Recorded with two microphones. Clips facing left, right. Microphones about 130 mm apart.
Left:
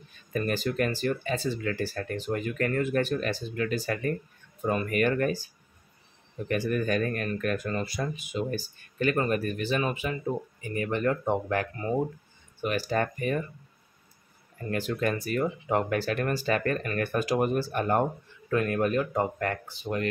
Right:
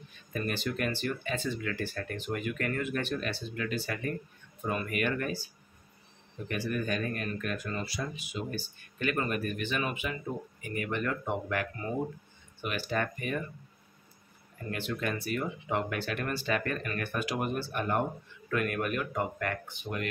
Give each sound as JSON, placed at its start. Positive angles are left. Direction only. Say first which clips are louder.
{"t": 0.3, "sound": "speech", "louder": "left 5 dB", "side_deg": 40}
{"t": 6.5, "sound": "speech", "louder": "left 5 dB", "side_deg": 45}
{"t": 12.6, "sound": "speech", "louder": "left 5 dB", "side_deg": 40}
{"t": 14.7, "sound": "speech", "louder": "left 5 dB", "side_deg": 40}
{"t": 18.5, "sound": "speech", "louder": "left 5 dB", "side_deg": 30}